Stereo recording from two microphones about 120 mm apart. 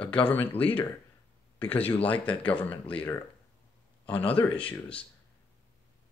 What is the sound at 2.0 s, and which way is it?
Speech, 10° left (ahead or behind).